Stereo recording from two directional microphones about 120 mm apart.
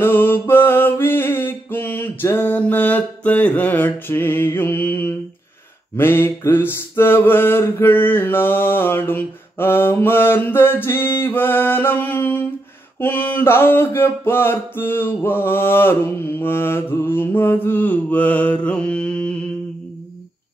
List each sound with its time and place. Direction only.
0.0 s mantra: 15° left (ahead or behind)